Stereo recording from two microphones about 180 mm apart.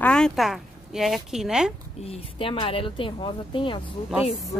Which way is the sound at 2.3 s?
30° left (ahead or behind).